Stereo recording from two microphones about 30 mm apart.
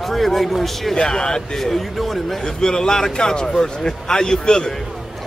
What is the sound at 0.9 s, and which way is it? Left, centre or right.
Speech, left.